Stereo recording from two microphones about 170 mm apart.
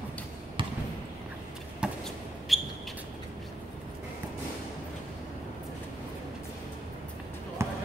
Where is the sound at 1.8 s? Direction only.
5° right (ahead or behind).